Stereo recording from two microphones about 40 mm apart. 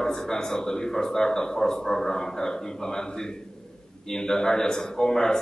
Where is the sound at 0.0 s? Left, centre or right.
Centre.